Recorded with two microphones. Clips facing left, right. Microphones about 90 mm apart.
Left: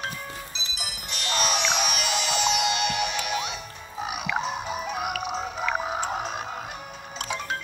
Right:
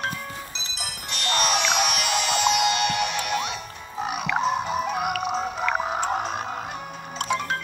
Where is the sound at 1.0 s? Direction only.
60° right (ahead or behind).